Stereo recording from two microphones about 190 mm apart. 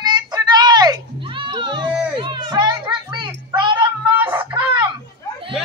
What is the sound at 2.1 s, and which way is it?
Children playing, 25° right (ahead or behind).